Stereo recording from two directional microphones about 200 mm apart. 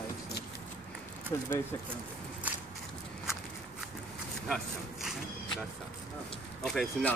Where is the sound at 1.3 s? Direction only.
15° left (ahead or behind).